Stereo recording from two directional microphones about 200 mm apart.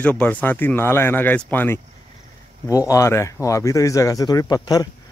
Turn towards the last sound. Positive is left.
turn(degrees=20)  # may be behind; listen again after turning